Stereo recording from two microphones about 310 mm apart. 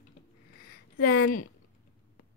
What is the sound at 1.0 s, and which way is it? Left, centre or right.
Speech, left.